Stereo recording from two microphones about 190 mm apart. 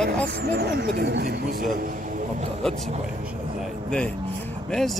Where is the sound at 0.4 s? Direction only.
60° right (ahead or behind).